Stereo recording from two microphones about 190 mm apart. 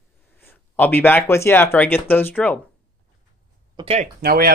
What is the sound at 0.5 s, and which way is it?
Speech, 10° left (ahead or behind).